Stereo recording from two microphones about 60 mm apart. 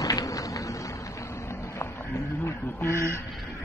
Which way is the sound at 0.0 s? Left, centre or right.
Left.